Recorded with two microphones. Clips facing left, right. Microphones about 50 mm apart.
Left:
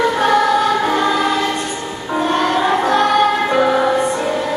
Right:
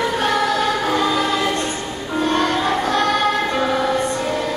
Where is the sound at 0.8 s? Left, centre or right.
Centre.